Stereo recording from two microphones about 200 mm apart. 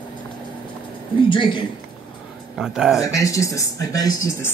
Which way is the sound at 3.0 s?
15° left (ahead or behind).